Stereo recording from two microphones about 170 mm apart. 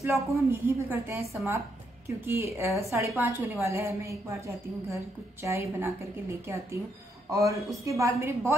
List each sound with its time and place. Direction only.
0.0 s a woman's voice: 15° right (ahead or behind)